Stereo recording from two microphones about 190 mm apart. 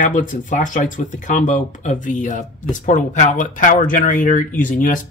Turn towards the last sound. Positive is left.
turn(degrees=45)  # may be behind; listen again after turning